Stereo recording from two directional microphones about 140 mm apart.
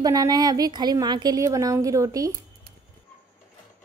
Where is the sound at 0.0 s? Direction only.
25° right (ahead or behind).